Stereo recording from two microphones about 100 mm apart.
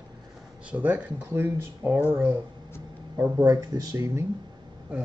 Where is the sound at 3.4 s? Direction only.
40° right (ahead or behind).